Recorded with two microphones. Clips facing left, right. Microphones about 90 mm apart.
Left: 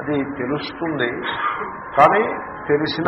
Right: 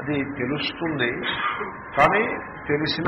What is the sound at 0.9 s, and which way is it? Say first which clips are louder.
A man's voice: left 3 dB; 30° left (ahead or behind).